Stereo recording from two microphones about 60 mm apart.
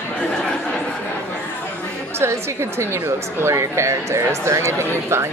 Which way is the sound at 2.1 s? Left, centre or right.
Right.